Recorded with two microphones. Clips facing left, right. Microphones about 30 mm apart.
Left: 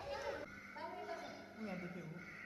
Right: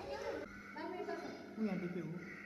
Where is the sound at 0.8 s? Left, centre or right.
Centre.